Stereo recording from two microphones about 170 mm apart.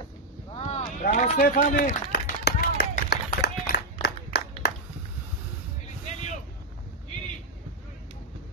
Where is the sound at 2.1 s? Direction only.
80° left.